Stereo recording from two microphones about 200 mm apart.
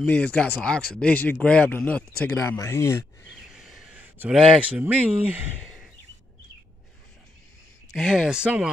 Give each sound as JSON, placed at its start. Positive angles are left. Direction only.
{"t": 0.0, "sound": "speech", "side_deg": 5}
{"t": 3.3, "sound": "speech", "side_deg": 0}
{"t": 7.9, "sound": "speech", "side_deg": 0}